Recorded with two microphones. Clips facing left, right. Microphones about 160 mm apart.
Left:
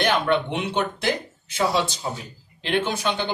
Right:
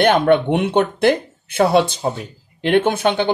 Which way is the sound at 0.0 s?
55° right (ahead or behind).